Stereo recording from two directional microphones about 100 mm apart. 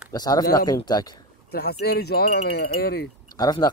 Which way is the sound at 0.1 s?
40° left (ahead or behind).